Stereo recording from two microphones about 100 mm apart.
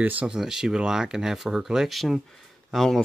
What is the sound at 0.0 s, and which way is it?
Speech, 15° right (ahead or behind).